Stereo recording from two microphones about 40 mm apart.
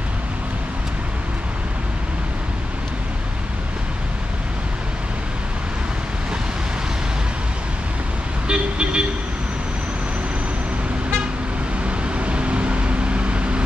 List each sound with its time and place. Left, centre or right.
8.5 s vehicle: right
11.8 s vehicle: right